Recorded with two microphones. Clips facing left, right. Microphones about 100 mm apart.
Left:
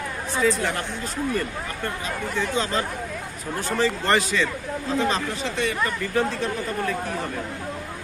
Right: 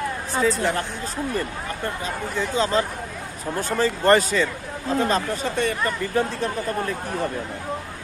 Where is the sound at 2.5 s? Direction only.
35° right (ahead or behind).